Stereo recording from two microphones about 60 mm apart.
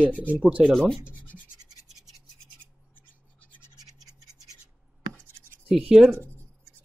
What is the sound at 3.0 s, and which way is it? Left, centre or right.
Scratch, left.